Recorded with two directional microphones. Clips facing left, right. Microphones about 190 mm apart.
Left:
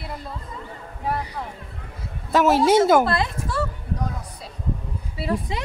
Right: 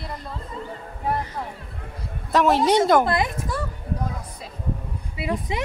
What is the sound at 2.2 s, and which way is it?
Speech, centre (ahead or behind).